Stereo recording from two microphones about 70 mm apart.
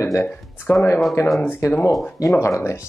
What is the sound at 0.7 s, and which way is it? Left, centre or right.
Speech, left.